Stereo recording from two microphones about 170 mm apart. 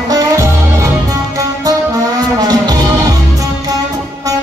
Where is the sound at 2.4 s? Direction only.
25° right (ahead or behind).